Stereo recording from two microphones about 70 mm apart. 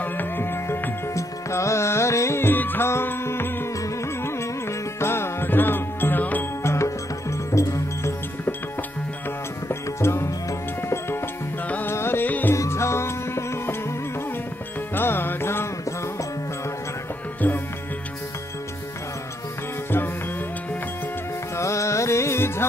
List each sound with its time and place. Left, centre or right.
0.0 s music: left
1.1 s music: left
5.0 s music: left
6.6 s music: left
9.7 s music: left
11.9 s music: left
12.5 s music: left
15.0 s music: left
21.5 s music: left